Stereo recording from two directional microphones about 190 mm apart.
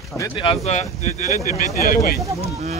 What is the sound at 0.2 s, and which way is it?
Speech, 25° left (ahead or behind).